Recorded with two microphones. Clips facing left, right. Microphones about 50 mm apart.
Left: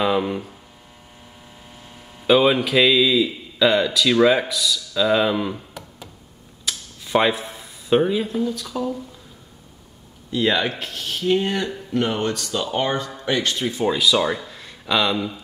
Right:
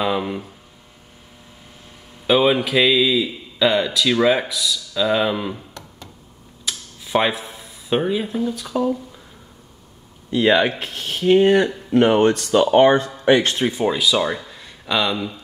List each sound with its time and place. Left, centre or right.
0.0 s a man's voice: centre
2.2 s a man's voice: centre
6.6 s speech: centre
10.3 s speech: right
13.8 s speech: centre